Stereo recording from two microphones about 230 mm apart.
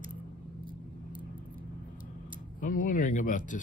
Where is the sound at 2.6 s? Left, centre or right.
Left.